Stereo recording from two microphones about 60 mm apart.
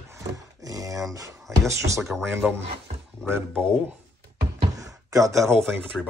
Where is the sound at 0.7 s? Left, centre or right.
Right.